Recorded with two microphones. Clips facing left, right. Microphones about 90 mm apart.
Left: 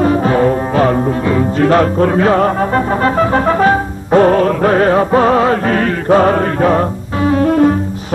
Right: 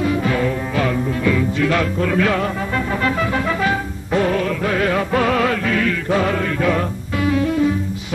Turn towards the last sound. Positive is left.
turn(degrees=50)  # may be behind; listen again after turning